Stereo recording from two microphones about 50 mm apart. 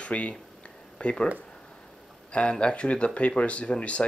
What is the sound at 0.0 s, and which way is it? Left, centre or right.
Speech, left.